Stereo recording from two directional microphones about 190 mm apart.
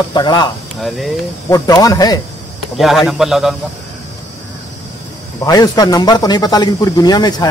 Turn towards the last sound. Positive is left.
turn(degrees=20)  # may be behind; listen again after turning